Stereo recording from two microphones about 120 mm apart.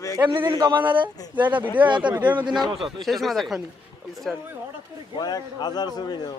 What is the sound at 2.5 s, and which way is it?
Speech, 40° right (ahead or behind).